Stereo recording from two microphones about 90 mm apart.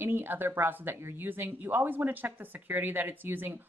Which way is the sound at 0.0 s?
20° right (ahead or behind).